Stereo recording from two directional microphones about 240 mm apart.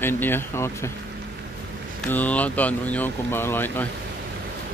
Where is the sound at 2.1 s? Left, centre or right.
Centre.